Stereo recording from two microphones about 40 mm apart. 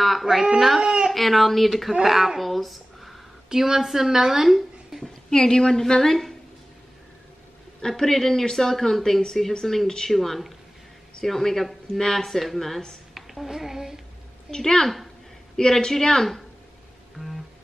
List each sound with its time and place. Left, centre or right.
0.0 s speech: centre
0.7 s a sound: centre
1.1 s a woman's voice: centre
3.4 s speech: centre
5.0 s speech: centre
7.8 s speech: centre
10.1 s speech: centre
13.1 s a sound: centre
14.5 s speech: centre